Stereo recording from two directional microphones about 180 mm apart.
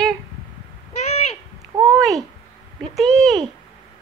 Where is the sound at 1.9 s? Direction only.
Centre (ahead or behind).